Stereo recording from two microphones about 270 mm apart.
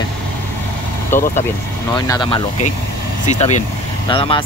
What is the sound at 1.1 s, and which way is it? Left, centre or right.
Speech, centre.